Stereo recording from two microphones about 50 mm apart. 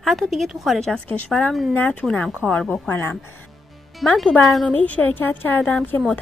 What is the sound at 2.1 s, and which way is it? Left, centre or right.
Speech, left.